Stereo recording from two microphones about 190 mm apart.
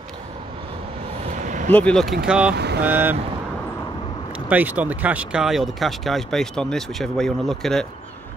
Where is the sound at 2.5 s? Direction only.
60° right (ahead or behind).